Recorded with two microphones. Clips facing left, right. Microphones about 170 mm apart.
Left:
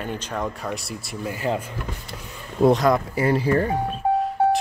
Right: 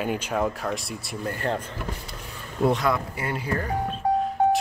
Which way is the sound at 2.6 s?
40° left (ahead or behind).